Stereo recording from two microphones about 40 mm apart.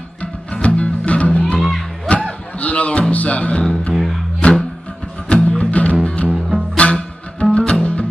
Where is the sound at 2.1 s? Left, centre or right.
Left.